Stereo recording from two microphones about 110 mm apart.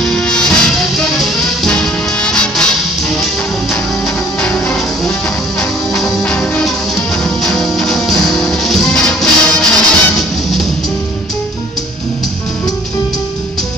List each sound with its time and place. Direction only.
0.0 s music: 5° left (ahead or behind)
4.4 s music: 10° left (ahead or behind)